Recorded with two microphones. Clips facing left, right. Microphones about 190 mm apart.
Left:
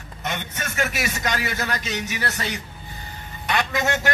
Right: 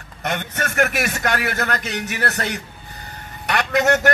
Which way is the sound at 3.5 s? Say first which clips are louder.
Right 5 dB; 65° right (ahead or behind).